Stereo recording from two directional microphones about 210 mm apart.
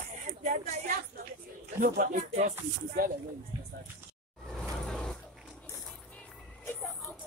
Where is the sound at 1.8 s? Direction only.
35° right (ahead or behind).